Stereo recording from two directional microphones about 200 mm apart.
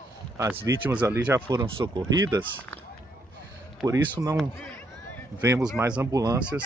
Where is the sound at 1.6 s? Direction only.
25° right (ahead or behind).